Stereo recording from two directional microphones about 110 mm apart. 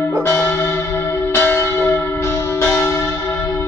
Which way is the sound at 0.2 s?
20° left (ahead or behind).